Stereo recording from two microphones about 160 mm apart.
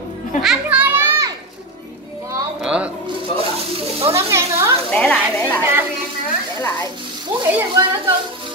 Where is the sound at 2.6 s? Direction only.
5° right (ahead or behind).